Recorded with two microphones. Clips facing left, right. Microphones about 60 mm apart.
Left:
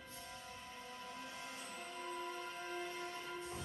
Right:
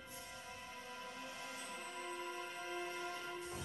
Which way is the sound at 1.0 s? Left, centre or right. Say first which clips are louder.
Even; centre.